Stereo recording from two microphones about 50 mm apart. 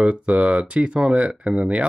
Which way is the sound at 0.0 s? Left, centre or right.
Right.